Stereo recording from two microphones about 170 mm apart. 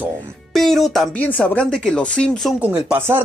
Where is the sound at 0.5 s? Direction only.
Centre (ahead or behind).